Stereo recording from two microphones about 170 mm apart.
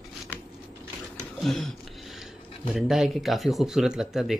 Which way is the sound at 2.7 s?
Centre (ahead or behind).